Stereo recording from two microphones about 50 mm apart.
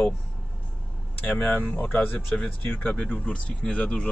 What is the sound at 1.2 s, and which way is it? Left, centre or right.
Speech, left.